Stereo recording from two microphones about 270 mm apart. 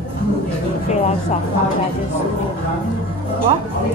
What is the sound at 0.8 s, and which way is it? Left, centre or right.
Speech, left.